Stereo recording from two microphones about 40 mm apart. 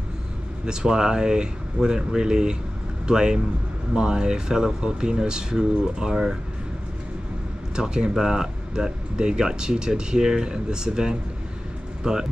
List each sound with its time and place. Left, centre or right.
0.7 s speech: centre
7.7 s speech: centre